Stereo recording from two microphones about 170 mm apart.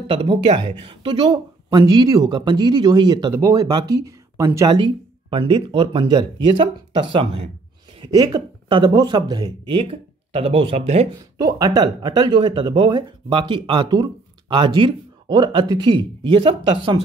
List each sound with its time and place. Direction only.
0.0 s speech: 30° right (ahead or behind)
4.7 s speech: 30° right (ahead or behind)
11.3 s speech: 20° right (ahead or behind)